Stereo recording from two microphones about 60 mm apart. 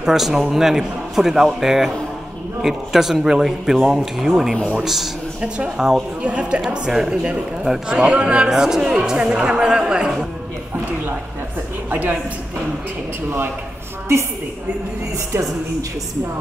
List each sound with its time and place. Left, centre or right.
0.0 s speech: centre
6.2 s speech: centre
6.9 s speech: centre
11.9 s speech: right
15.3 s a woman's voice: right